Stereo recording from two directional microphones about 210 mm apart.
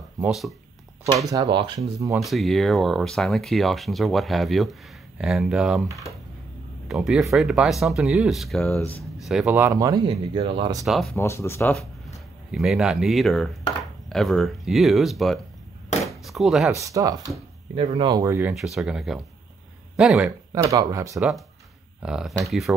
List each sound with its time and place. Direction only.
0.2 s speech: centre (ahead or behind)
1.1 s speech: 15° right (ahead or behind)
2.1 s speech: centre (ahead or behind)
6.9 s speech: centre (ahead or behind); by 10.9 s 20° right (ahead or behind)
10.9 s speech: centre (ahead or behind)
11.1 s speech: 10° left (ahead or behind)
12.4 s speech: centre (ahead or behind)
16.7 s speech: 15° right (ahead or behind)
18.5 s speech: centre (ahead or behind)
20.2 s speech: 15° right (ahead or behind)
22.0 s speech: centre (ahead or behind)